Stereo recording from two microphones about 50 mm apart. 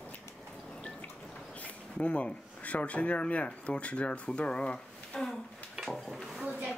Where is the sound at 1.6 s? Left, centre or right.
Left.